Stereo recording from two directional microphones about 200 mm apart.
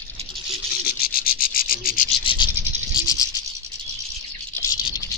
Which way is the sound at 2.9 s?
20° left (ahead or behind).